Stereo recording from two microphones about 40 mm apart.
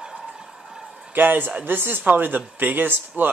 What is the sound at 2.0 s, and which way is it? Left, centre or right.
Speech, right.